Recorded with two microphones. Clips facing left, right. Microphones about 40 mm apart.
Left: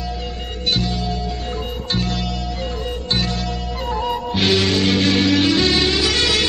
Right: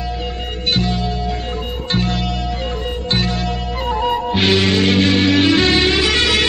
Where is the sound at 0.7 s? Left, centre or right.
Right.